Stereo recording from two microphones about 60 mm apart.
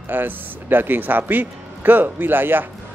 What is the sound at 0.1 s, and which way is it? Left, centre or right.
Speech, right.